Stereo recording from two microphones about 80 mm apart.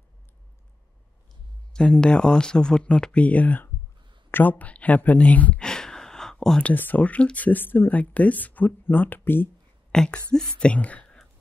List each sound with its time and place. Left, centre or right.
1.7 s speech: centre
5.6 s a sound: centre
6.6 s speech: left
9.9 s speech: centre